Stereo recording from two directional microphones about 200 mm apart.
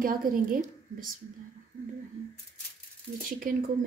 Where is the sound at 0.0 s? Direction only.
45° right (ahead or behind).